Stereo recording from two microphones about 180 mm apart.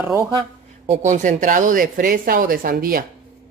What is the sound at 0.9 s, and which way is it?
Speech, 40° right (ahead or behind).